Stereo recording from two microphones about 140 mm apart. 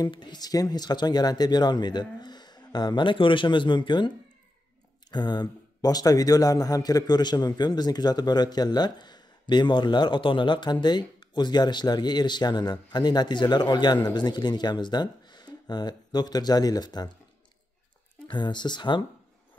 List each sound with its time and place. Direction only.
0.0 s speech: 30° left (ahead or behind)
5.1 s speech: 30° left (ahead or behind)
18.3 s speech: 35° left (ahead or behind)